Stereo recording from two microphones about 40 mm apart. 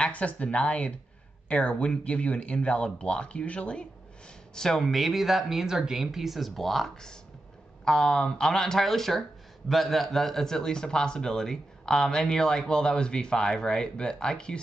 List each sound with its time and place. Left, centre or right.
0.0 s speech: left
4.6 s a man's voice: centre
4.8 s speech: centre
7.8 s a man's voice: centre